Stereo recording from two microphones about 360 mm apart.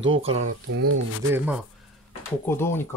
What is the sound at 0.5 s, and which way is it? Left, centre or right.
Speech, right.